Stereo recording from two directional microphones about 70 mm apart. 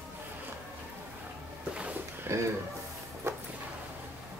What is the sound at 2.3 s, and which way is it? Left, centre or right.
Speech, right.